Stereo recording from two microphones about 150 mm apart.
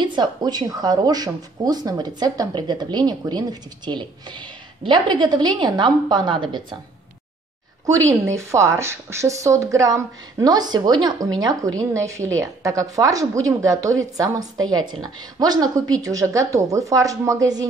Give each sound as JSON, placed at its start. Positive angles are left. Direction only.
{"t": 0.0, "sound": "a woman's voice", "side_deg": -30}
{"t": 7.8, "sound": "a woman's voice", "side_deg": -20}